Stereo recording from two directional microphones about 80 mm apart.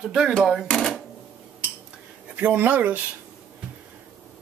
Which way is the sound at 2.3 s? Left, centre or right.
Right.